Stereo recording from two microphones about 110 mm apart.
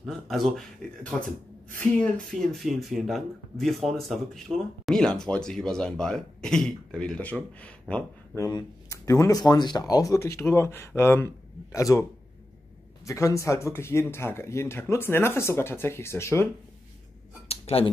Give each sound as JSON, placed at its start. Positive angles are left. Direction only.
{"t": 0.0, "sound": "speech", "side_deg": 0}
{"t": 2.4, "sound": "speech", "side_deg": 0}
{"t": 8.4, "sound": "speech", "side_deg": 35}
{"t": 9.4, "sound": "speech", "side_deg": 40}
{"t": 17.5, "sound": "a sound", "side_deg": 65}